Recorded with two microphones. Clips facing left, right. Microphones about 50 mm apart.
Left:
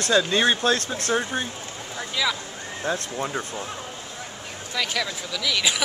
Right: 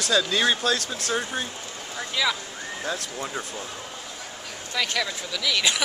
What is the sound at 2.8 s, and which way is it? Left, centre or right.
Speech, left.